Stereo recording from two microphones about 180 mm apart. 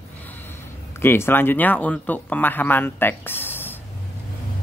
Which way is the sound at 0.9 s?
15° left (ahead or behind).